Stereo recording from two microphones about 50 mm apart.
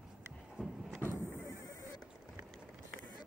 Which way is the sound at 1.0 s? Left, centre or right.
Left.